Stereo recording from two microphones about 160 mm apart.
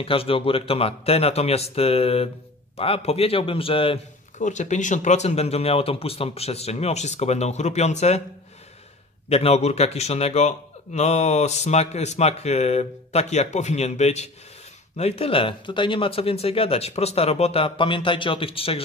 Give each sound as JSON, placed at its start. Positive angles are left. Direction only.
{"t": 0.0, "sound": "speech", "side_deg": 35}
{"t": 4.4, "sound": "a man's voice", "side_deg": 50}
{"t": 9.3, "sound": "a man's voice", "side_deg": 40}